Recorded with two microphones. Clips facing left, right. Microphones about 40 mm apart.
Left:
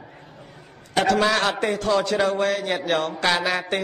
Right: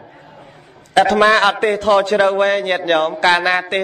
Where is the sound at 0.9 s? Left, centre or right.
Right.